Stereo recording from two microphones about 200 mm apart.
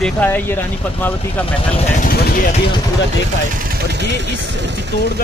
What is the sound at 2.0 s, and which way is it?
Speech, 50° left (ahead or behind).